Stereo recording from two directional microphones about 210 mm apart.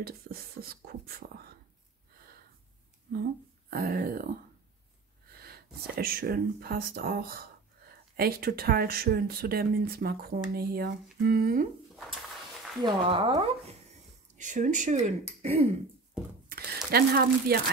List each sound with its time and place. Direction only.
0.0 s speech: 45° right (ahead or behind)
3.7 s speech: 45° right (ahead or behind)
5.9 s speech: 45° right (ahead or behind)
12.8 s speech: 25° right (ahead or behind)
14.3 s speech: 35° right (ahead or behind)
16.4 s a sound: 45° right (ahead or behind)